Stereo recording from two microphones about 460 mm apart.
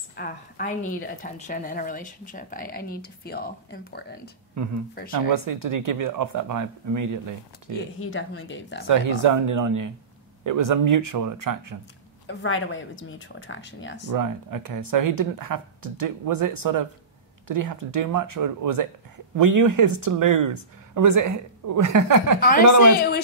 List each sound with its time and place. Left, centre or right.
0.1 s a woman's voice: centre
5.1 s speech: right
8.0 s speech: left
8.8 s speech: right
12.3 s speech: left
14.1 s speech: right